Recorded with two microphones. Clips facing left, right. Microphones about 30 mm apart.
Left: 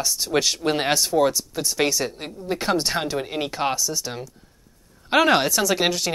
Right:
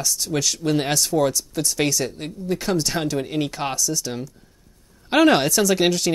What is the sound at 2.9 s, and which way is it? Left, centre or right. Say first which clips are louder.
A woman's voice: right 2 dB; centre.